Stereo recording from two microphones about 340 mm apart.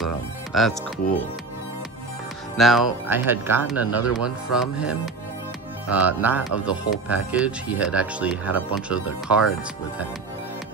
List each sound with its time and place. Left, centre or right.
0.0 s music: centre
2.5 s speech: centre